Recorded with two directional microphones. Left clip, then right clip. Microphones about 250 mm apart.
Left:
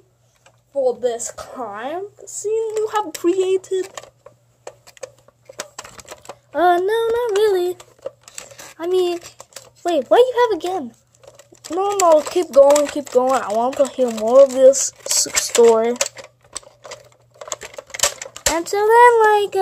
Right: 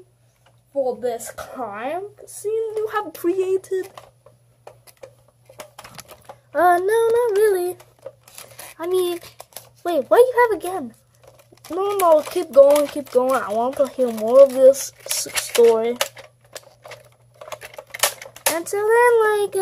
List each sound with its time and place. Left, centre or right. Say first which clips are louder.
0.8 s speech: left 4 dB; left
5.0 s tick-tock: left 8 dB; left
6.5 s speech: even; centre
8.7 s speech: left 3 dB; centre
11.7 s speech: left 2 dB; centre
17.4 s typing: left 4 dB; left
18.6 s speech: left 5 dB; left